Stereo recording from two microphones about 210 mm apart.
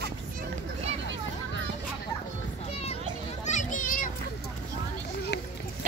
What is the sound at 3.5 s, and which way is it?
Children playing, 35° left (ahead or behind).